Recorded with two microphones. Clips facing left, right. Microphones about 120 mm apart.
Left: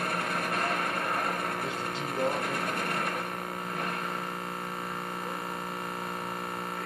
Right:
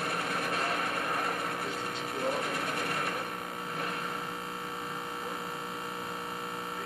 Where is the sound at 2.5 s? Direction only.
50° left (ahead or behind).